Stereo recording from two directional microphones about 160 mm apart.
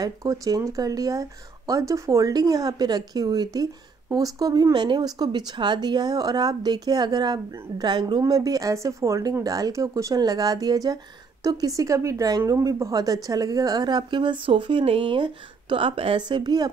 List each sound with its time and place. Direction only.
0.0 s speech: 20° right (ahead or behind)